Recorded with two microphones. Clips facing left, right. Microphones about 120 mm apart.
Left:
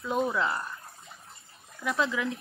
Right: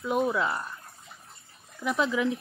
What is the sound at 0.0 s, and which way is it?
Speech, 15° right (ahead or behind).